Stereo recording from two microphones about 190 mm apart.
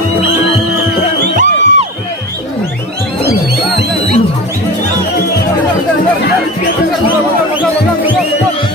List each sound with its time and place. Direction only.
1.3 s music: 40° right (ahead or behind)